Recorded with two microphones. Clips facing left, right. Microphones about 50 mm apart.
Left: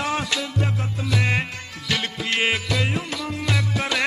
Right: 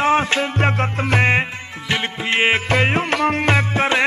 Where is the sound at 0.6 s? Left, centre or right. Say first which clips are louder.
Right 7 dB; right.